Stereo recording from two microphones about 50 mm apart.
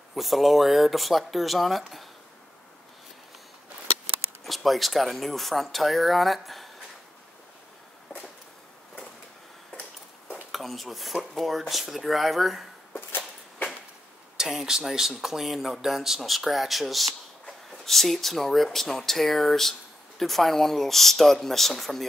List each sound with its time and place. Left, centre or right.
0.1 s speech: centre
4.5 s speech: centre
10.3 s speech: centre
14.3 s speech: centre